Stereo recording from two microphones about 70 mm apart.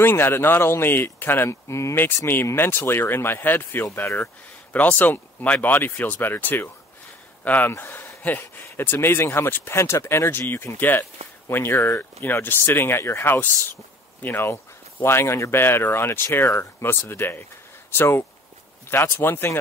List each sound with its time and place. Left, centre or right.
0.0 s speech: left
2.2 s speech: left